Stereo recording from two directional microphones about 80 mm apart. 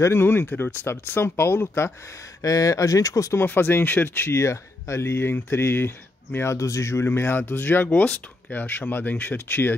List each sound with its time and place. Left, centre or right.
0.0 s speech: left
2.4 s speech: left
3.3 s speech: left
7.1 s speech: left